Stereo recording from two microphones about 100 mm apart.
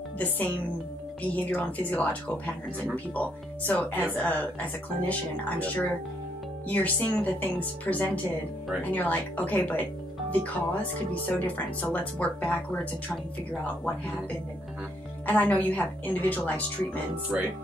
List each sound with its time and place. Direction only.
0.2 s a woman's voice: 15° left (ahead or behind)
11.2 s a woman's voice: 15° left (ahead or behind)
15.2 s a woman's voice: 15° left (ahead or behind)
17.3 s speech: 10° right (ahead or behind)